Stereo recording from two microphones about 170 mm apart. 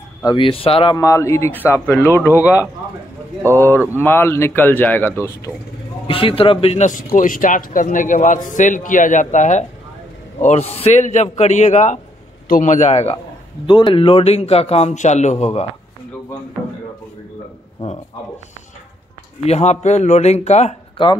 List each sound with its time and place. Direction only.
0.2 s a man's voice: 25° left (ahead or behind)
0.9 s speech: 20° left (ahead or behind)
3.5 s speech: 15° left (ahead or behind)
6.0 s a man's voice: 30° left (ahead or behind)
13.7 s a man's voice: 30° left (ahead or behind)
19.4 s a man's voice: 40° left (ahead or behind)